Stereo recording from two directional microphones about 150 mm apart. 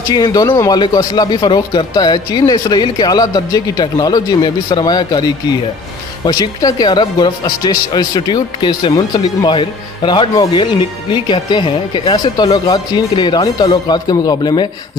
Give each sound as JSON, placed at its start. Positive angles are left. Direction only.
{"t": 0.1, "sound": "speech", "side_deg": 25}